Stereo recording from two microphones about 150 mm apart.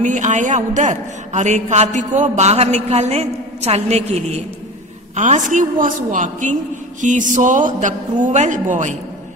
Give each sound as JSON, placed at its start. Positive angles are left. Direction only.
{"t": 0.0, "sound": "a man's voice", "side_deg": -55}